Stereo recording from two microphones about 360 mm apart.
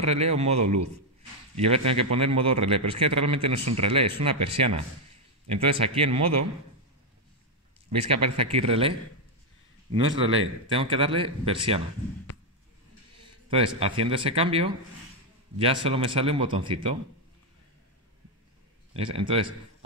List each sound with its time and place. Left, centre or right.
0.0 s speech: centre
8.0 s speech: centre
10.2 s speech: centre
13.2 s a sound: centre
13.7 s speech: centre
18.9 s speech: centre